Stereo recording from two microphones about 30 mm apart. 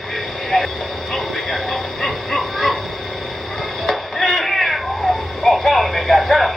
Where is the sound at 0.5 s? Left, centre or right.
Centre.